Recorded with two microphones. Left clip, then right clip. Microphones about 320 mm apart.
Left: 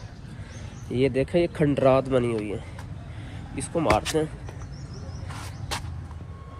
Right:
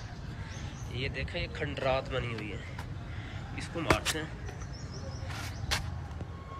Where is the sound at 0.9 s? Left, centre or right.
Centre.